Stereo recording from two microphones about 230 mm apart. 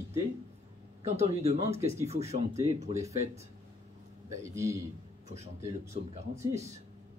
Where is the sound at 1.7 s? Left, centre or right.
Centre.